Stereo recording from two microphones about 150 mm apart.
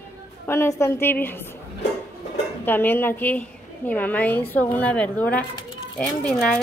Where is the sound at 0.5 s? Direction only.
15° left (ahead or behind).